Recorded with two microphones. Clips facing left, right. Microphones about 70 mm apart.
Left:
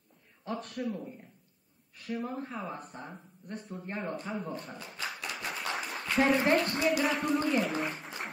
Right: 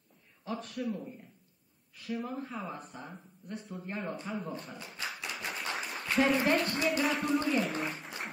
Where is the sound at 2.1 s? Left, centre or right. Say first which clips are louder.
Left 1 dB; left.